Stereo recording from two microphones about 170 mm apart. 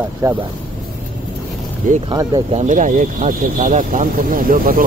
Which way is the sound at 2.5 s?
45° right (ahead or behind).